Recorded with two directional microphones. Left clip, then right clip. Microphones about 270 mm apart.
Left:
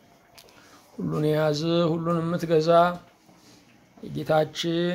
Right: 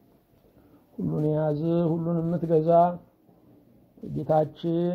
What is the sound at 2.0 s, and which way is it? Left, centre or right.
Speech, centre.